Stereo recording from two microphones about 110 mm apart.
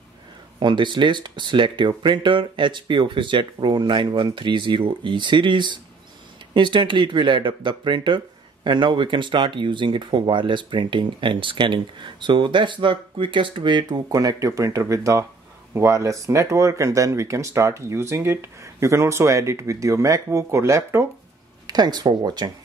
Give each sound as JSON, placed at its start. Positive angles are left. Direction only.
{"t": 0.6, "sound": "speech", "side_deg": -45}
{"t": 21.6, "sound": "speech", "side_deg": -40}